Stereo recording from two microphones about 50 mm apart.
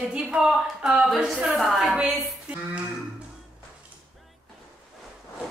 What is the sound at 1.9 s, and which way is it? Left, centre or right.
Speech, centre.